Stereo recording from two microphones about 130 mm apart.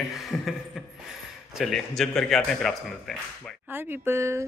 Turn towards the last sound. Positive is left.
turn(degrees=-20)  # may be behind; listen again after turning